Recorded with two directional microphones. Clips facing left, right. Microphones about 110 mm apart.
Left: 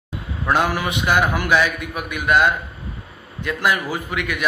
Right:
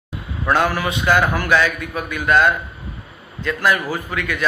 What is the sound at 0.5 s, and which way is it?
A man's voice, 15° left (ahead or behind).